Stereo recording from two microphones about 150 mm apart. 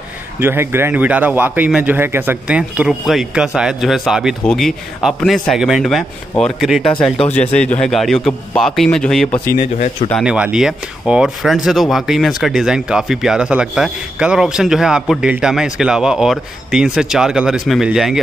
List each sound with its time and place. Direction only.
0.4 s a man's voice: 15° right (ahead or behind); by 9.4 s 5° left (ahead or behind)
9.5 s speech: 55° left (ahead or behind)
10.2 s speech: 5° right (ahead or behind)